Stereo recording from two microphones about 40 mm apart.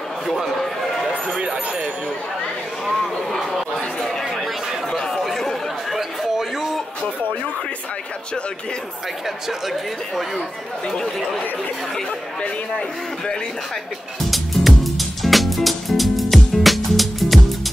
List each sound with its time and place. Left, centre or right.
0.6 s a sound: centre
1.4 s speech: right
2.9 s a sound: centre
3.3 s chatter: centre
4.0 s chatter: centre
5.9 s a sound: centre
9.5 s speech: centre
10.9 s speech: centre
14.3 s music: centre